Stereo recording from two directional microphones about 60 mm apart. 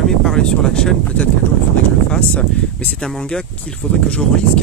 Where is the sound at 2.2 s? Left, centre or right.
Left.